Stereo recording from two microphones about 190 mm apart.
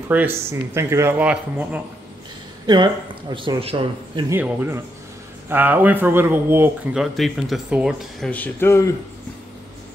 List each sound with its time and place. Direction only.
0.1 s speech: 10° right (ahead or behind)
2.6 s speech: 20° right (ahead or behind)
4.3 s speech: 10° right (ahead or behind); by 8.9 s 15° left (ahead or behind)